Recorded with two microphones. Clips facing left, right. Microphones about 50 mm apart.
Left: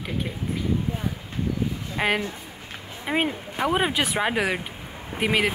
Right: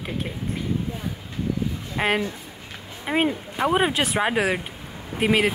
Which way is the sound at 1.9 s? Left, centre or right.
Centre.